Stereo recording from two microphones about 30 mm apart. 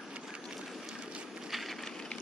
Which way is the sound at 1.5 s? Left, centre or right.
Centre.